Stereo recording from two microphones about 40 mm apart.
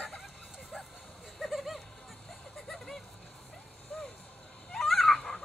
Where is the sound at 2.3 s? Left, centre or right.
Centre.